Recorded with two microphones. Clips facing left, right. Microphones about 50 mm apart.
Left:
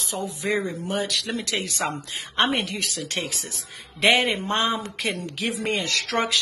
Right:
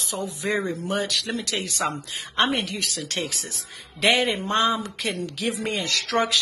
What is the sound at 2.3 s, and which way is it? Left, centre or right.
A woman's voice, centre.